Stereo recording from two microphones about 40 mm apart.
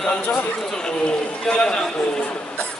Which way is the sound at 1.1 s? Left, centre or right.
Centre.